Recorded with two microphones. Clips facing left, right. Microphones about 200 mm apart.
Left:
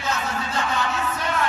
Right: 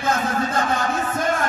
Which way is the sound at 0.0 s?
50° right (ahead or behind).